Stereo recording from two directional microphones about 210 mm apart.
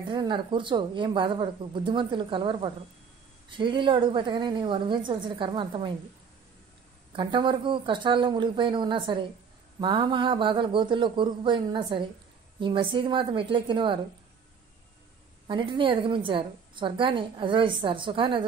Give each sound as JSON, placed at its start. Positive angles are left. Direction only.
{"t": 0.0, "sound": "a woman's voice", "side_deg": -20}
{"t": 7.1, "sound": "a woman's voice", "side_deg": -25}
{"t": 15.4, "sound": "a woman's voice", "side_deg": -25}